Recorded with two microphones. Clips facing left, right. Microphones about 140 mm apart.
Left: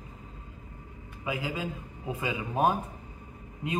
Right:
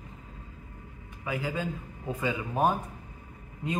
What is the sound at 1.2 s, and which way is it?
A man's voice, 15° left (ahead or behind).